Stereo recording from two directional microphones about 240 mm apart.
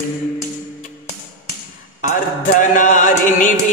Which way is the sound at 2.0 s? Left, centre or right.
Left.